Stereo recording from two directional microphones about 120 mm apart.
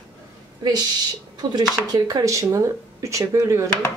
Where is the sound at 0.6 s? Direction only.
35° right (ahead or behind).